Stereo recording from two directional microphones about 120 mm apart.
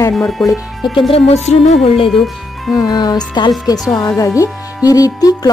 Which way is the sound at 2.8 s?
35° left (ahead or behind).